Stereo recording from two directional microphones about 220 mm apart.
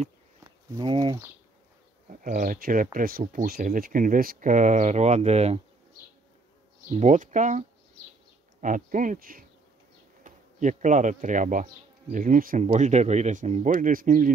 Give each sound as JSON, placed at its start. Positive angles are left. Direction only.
{"t": 0.4, "sound": "speech", "side_deg": -15}
{"t": 2.0, "sound": "speech", "side_deg": -35}
{"t": 6.9, "sound": "speech", "side_deg": -30}